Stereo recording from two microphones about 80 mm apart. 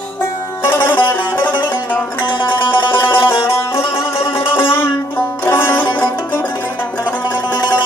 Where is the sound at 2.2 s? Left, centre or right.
Left.